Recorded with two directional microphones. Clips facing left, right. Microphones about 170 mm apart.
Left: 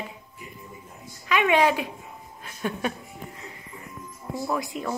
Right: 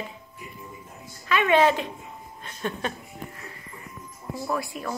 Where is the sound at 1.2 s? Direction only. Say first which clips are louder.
Right 1 dB; 15° left (ahead or behind).